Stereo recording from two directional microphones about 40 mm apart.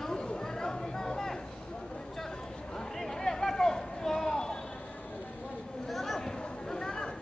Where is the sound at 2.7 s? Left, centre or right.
Centre.